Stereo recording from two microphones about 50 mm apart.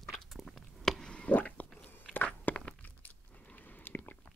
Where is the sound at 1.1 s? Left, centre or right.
Left.